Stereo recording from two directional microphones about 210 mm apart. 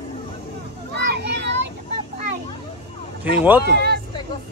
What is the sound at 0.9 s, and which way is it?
Children playing, 55° right (ahead or behind).